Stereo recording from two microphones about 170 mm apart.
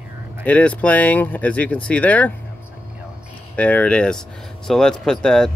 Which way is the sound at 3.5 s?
10° left (ahead or behind).